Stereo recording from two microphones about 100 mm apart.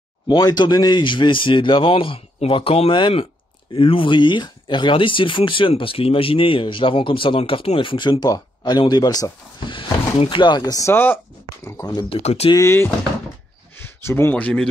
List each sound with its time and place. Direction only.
0.3 s speech: 45° left (ahead or behind)
10.3 s speech: 50° left (ahead or behind)
10.9 s speech: 20° left (ahead or behind)
11.6 s speech: 35° left (ahead or behind)
12.1 s speech: 90° left
12.5 s speech: 25° left (ahead or behind)
13.7 s a sound: 20° left (ahead or behind)
14.3 s speech: 10° left (ahead or behind)